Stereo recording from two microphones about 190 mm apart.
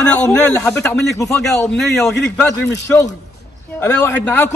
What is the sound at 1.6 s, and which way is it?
Speech, 5° left (ahead or behind).